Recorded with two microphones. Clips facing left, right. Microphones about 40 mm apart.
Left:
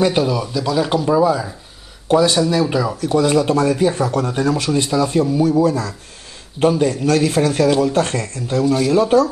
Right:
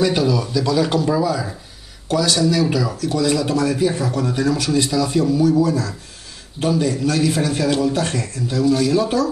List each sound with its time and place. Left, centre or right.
0.1 s speech: left
2.0 s a man's voice: left